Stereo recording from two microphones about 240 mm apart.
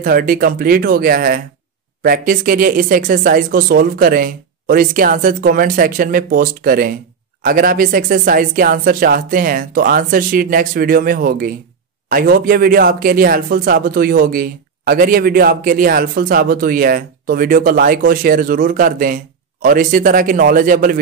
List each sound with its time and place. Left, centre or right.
0.0 s speech: right